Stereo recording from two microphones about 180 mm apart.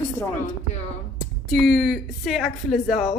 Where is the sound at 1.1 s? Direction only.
Centre (ahead or behind).